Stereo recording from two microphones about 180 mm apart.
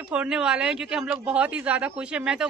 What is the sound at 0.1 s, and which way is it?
A woman's voice, 5° right (ahead or behind).